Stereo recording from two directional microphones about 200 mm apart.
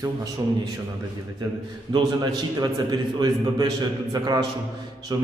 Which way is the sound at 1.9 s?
20° right (ahead or behind).